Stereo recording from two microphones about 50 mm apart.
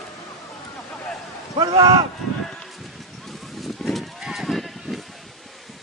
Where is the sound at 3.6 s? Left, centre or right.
Centre.